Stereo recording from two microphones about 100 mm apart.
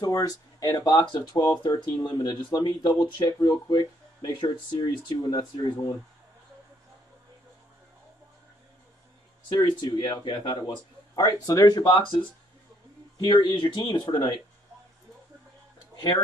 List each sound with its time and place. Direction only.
0.0 s speech: 40° left (ahead or behind)
9.5 s speech: 45° left (ahead or behind)
13.3 s speech: 50° left (ahead or behind)